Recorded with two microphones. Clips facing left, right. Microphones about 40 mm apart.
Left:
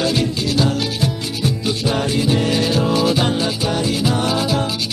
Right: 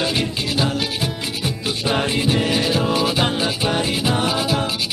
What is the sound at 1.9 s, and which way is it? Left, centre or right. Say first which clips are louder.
Music: even; right.